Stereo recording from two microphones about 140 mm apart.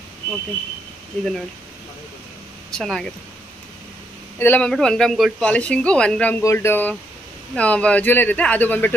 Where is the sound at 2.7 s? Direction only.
5° left (ahead or behind).